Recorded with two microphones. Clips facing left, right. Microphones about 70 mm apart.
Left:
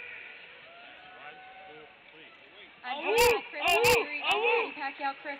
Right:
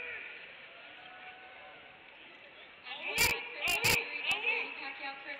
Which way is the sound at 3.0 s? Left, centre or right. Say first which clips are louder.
Left 11 dB; left.